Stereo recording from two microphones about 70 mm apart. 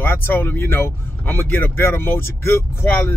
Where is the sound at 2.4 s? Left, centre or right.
Left.